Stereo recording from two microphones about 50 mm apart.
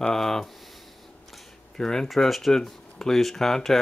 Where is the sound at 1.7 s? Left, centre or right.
Centre.